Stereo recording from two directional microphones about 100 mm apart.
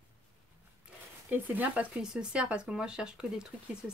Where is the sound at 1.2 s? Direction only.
20° right (ahead or behind).